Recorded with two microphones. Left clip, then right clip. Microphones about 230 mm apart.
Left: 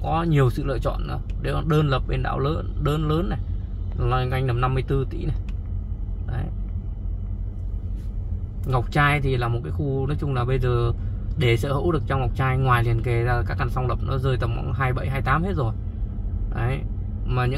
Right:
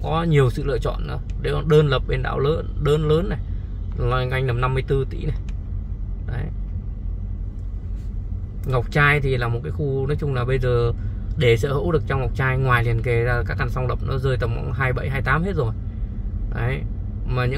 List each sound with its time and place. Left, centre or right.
0.0 s speech: right
8.6 s speech: right